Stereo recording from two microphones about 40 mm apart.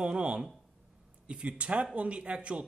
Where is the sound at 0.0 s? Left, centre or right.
Right.